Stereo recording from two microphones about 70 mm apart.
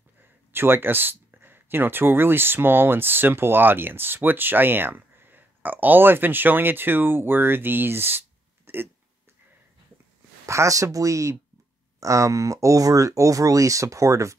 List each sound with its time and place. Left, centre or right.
0.5 s speech: right
8.7 s a sound: right
10.4 s speech: right